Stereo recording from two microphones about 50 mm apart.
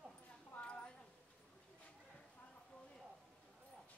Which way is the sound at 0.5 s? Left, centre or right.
Left.